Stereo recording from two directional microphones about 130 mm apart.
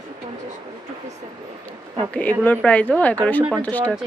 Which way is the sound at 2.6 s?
10° left (ahead or behind).